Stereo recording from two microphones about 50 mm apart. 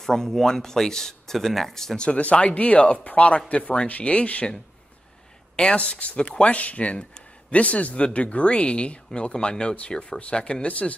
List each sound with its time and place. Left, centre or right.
0.0 s speech: centre
2.0 s speech: left
5.6 s speech: left
10.7 s speech: left